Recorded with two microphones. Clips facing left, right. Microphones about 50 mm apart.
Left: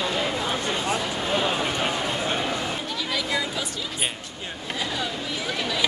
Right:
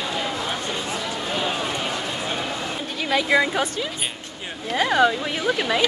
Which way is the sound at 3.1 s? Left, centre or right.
Right.